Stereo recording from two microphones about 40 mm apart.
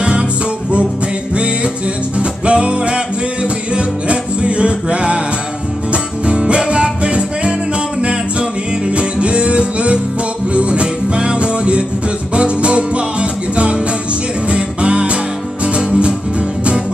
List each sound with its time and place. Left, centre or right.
1.3 s music: right